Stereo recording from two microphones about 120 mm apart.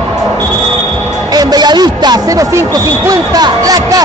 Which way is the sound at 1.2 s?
35° right (ahead or behind).